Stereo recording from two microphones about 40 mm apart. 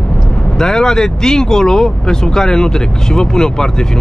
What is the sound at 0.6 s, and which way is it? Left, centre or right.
Speech, centre.